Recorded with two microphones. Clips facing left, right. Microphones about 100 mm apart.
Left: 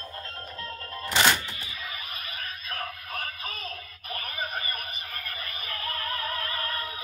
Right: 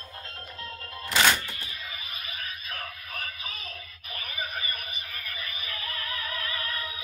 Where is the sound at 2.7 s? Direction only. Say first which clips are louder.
Left 3 dB; 50° left (ahead or behind).